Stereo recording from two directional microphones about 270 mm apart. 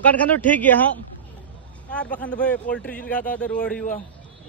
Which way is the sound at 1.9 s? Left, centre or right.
Centre.